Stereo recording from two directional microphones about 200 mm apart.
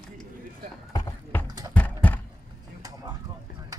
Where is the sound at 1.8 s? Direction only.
10° left (ahead or behind).